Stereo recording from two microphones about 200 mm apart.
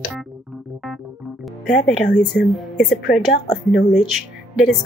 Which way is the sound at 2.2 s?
Centre (ahead or behind).